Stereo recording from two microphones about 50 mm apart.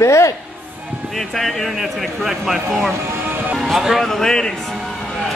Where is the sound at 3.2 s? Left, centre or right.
Right.